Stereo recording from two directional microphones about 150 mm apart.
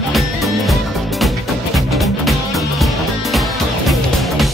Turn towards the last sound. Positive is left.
turn(degrees=0)  # may be behind; listen again after turning